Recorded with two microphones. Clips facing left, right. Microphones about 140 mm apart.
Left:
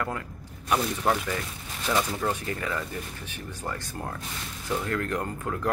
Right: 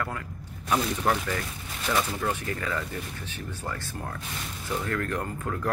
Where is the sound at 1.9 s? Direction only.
Centre (ahead or behind).